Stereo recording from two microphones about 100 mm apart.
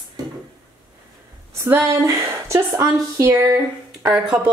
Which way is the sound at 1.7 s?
25° right (ahead or behind).